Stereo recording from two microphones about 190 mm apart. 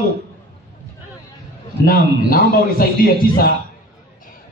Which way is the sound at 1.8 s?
50° left (ahead or behind).